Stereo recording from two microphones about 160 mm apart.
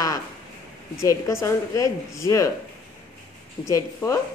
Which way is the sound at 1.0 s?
20° left (ahead or behind).